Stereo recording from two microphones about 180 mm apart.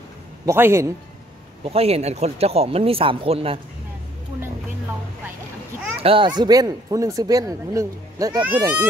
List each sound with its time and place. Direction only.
0.5 s a man's voice: 15° right (ahead or behind)
1.6 s speech: 35° right (ahead or behind)
6.0 s speech: 25° right (ahead or behind)